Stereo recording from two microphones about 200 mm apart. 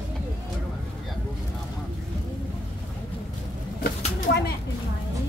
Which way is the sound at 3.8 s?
55° left (ahead or behind).